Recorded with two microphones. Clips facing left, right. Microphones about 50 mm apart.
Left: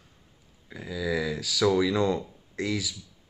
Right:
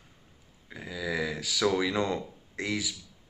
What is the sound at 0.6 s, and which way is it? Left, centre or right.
Speech, centre.